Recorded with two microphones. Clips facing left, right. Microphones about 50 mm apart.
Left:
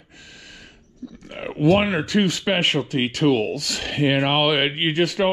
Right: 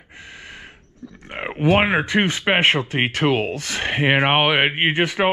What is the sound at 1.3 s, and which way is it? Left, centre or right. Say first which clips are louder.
Speech: even; right.